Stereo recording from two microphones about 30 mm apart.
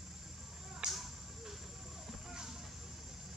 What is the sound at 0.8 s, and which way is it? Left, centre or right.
Whip, right.